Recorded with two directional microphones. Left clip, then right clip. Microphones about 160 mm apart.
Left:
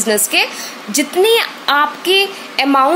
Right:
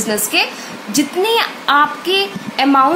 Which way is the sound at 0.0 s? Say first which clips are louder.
Left 2 dB; 40° left (ahead or behind).